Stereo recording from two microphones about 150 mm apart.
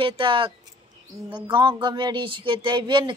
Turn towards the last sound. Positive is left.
turn(degrees=-30)  # may be behind; listen again after turning